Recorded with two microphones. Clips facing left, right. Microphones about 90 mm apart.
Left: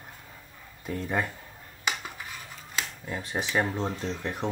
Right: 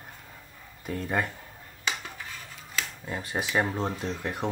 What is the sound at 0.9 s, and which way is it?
Speech, centre (ahead or behind).